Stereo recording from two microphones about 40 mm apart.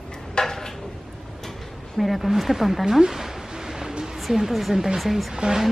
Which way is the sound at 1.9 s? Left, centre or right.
Centre.